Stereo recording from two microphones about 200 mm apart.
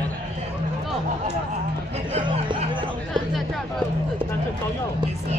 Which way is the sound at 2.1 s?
25° right (ahead or behind).